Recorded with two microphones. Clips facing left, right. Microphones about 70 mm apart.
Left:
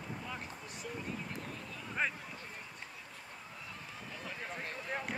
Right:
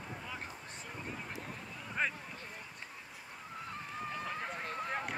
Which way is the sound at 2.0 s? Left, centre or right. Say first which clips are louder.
Even; centre.